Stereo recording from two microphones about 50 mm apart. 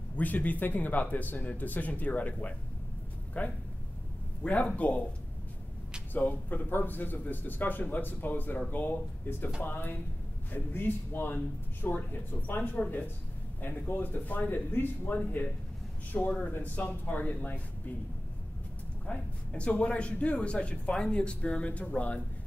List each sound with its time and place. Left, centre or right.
0.1 s a man's voice: left
6.1 s a man's voice: left
16.3 s a man's voice: left
16.5 s speech: left
19.0 s a man's voice: left